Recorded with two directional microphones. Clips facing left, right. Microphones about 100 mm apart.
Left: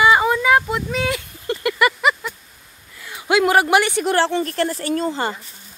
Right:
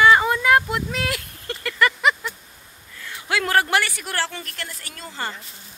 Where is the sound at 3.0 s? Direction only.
15° left (ahead or behind).